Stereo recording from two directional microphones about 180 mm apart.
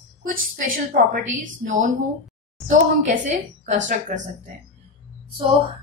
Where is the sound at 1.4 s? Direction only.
45° right (ahead or behind).